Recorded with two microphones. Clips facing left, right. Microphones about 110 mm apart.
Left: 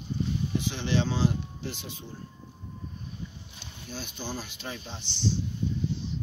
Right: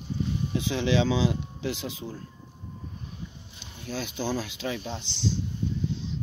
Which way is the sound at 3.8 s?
90° right.